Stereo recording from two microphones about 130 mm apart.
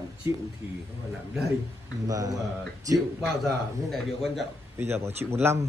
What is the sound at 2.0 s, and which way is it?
Speech, 30° right (ahead or behind).